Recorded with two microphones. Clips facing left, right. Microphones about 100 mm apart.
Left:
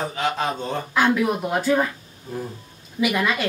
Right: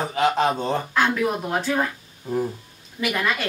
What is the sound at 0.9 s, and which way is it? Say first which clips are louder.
Speech: left 4 dB; 5° left (ahead or behind).